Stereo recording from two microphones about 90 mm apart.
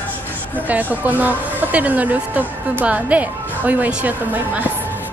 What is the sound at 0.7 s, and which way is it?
A woman's voice, 20° right (ahead or behind).